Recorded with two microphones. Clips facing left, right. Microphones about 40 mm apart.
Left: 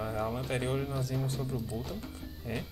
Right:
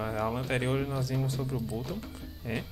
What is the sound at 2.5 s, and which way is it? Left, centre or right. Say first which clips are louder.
Speech: right 3 dB; right.